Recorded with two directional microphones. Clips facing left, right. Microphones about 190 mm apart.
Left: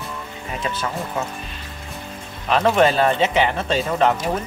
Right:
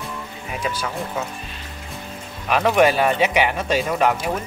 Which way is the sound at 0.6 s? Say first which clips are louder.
Right 1 dB; 10° right (ahead or behind).